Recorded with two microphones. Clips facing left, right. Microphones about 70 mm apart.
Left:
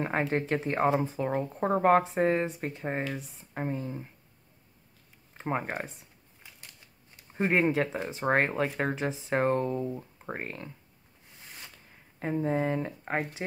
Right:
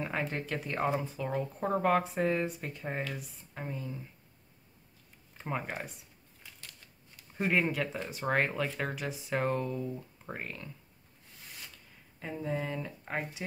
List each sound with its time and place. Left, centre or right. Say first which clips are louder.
0.2 s speech: left 7 dB; left
5.4 s speech: left 5 dB; left
6.4 s typewriter: even; left
7.3 s speech: left 4 dB; left
11.7 s speech: left 2 dB; left